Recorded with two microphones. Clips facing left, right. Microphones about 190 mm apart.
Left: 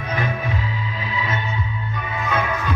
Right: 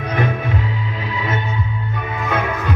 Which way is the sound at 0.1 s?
60° right (ahead or behind).